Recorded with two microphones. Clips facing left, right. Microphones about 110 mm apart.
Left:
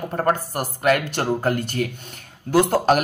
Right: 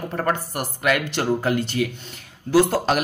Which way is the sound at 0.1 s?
40° left (ahead or behind).